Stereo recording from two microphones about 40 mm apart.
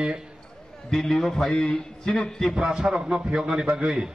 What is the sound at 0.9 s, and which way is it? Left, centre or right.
Speech, centre.